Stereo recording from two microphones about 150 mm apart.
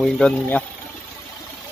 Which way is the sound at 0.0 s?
5° left (ahead or behind).